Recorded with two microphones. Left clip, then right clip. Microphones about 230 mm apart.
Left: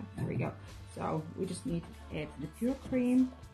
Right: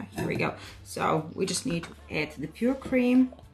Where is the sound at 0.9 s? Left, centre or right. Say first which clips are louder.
Right 10 dB; centre.